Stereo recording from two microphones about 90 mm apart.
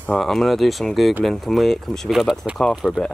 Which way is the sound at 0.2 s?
Centre (ahead or behind).